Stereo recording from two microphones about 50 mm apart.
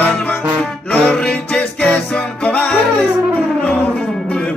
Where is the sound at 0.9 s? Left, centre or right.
Left.